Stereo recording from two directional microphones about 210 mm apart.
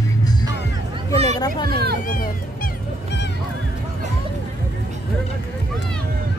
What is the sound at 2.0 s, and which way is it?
Music, 40° left (ahead or behind).